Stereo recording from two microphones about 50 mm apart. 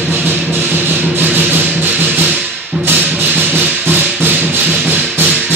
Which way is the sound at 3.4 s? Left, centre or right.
Right.